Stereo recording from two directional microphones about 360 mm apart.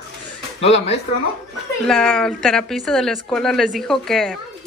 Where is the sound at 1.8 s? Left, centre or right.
Centre.